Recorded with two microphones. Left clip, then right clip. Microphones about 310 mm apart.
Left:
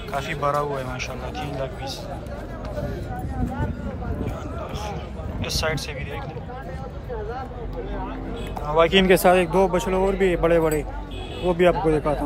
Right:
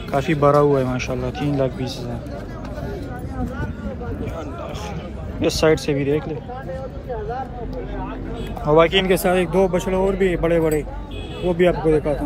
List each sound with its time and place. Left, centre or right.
0.1 s a man's voice: centre
5.4 s a man's voice: centre
8.6 s speech: centre
8.9 s speech: left
9.7 s speech: centre